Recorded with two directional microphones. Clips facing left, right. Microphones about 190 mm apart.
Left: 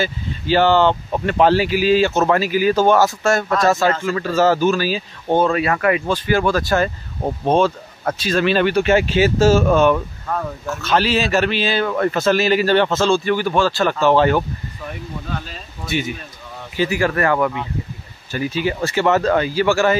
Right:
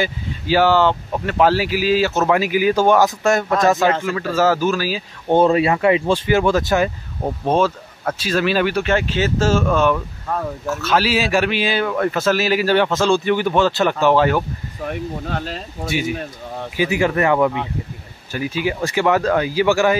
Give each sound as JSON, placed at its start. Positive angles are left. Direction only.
{"t": 0.0, "sound": "speech", "side_deg": -10}
{"t": 1.1, "sound": "speech", "side_deg": 5}
{"t": 1.4, "sound": "speech", "side_deg": -5}
{"t": 5.3, "sound": "speech", "side_deg": -25}
{"t": 7.4, "sound": "speech", "side_deg": -5}
{"t": 8.8, "sound": "speech", "side_deg": 10}
{"t": 10.3, "sound": "speech", "side_deg": -5}
{"t": 14.9, "sound": "speech", "side_deg": -70}
{"t": 16.7, "sound": "speech", "side_deg": -15}